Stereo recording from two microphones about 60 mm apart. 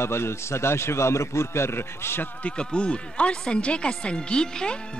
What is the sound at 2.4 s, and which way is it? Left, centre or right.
Speech, centre.